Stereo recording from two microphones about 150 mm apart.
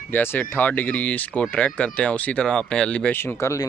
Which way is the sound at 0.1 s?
15° left (ahead or behind).